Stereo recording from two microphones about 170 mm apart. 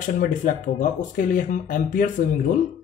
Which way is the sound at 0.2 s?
50° left (ahead or behind).